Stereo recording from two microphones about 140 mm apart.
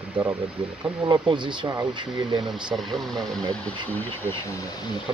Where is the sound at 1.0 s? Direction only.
35° right (ahead or behind).